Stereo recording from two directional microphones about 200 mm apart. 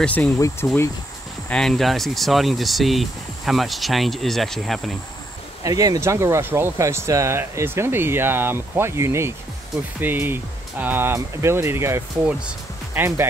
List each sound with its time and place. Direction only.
0.0 s speech: 5° left (ahead or behind)
5.6 s speech: 15° right (ahead or behind)